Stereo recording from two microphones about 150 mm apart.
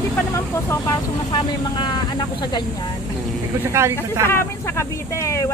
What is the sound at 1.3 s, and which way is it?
Speech, 30° left (ahead or behind).